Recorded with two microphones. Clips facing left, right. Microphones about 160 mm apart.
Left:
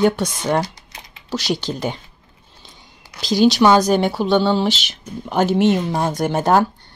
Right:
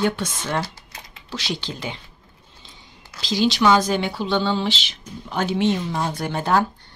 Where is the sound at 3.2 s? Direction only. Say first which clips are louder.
Left 6 dB; 40° left (ahead or behind).